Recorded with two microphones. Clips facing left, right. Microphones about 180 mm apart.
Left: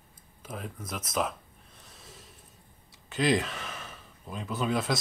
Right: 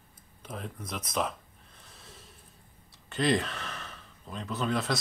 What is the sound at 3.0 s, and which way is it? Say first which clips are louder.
Speech: left 1 dB; centre (ahead or behind).